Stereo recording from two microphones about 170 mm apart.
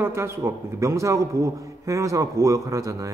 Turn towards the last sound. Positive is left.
turn(degrees=-20)  # may be behind; listen again after turning